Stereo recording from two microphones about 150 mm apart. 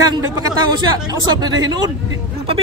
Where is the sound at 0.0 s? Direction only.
25° right (ahead or behind).